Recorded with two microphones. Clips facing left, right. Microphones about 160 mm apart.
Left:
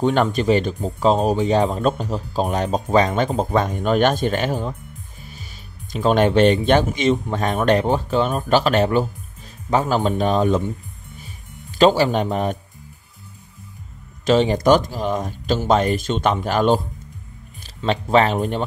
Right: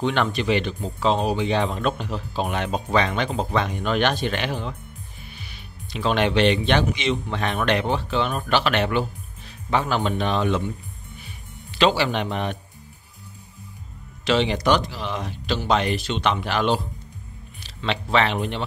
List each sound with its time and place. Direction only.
0.0 s speech: 45° left (ahead or behind)
11.8 s speech: 45° left (ahead or behind)
14.2 s speech: 45° left (ahead or behind)
17.8 s speech: 40° left (ahead or behind)